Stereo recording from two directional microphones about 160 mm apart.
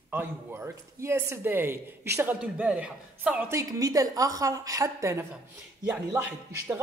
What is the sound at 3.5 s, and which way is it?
A woman's voice, 20° right (ahead or behind).